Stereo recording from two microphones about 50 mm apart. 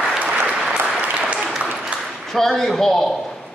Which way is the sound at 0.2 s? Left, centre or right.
Right.